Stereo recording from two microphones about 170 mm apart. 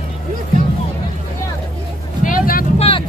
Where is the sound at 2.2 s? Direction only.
55° left (ahead or behind).